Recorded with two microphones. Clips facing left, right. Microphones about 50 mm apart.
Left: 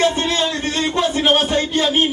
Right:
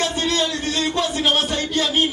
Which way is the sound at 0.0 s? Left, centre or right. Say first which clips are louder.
Left 4 dB; left.